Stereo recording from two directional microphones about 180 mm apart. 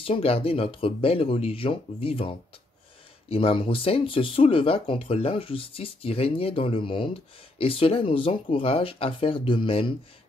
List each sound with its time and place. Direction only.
0.0 s speech: 30° left (ahead or behind)